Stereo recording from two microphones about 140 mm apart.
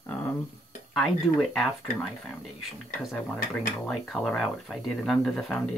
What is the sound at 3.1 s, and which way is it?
Speech, 10° left (ahead or behind).